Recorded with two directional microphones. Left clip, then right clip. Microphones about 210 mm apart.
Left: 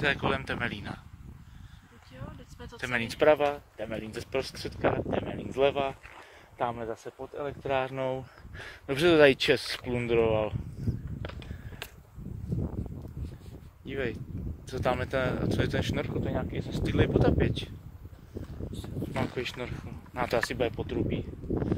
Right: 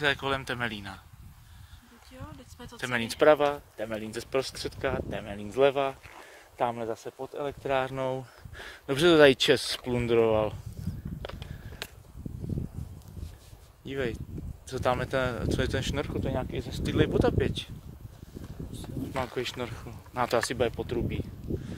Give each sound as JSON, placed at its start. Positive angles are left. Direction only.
{"t": 0.0, "sound": "speech", "side_deg": -10}
{"t": 2.1, "sound": "a sound", "side_deg": -45}
{"t": 2.8, "sound": "speech", "side_deg": -10}
{"t": 11.2, "sound": "biting", "side_deg": -25}
{"t": 13.8, "sound": "speech", "side_deg": -10}
{"t": 18.7, "sound": "speech", "side_deg": -20}